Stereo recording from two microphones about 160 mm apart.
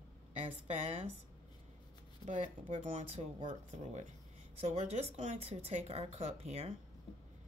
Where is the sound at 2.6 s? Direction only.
40° right (ahead or behind).